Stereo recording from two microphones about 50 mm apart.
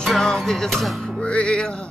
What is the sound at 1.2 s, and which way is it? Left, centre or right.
Music, left.